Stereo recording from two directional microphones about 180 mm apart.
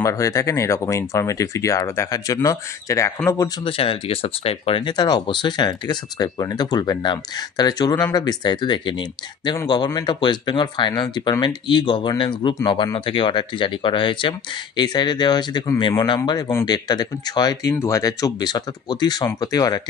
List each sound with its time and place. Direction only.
0.0 s speech: 20° left (ahead or behind)
3.6 s speech: 30° left (ahead or behind)